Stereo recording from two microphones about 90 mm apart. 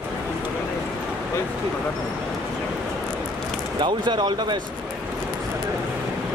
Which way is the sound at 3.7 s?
55° right (ahead or behind).